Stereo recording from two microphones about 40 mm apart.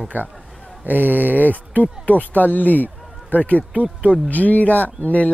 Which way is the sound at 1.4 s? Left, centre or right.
Left.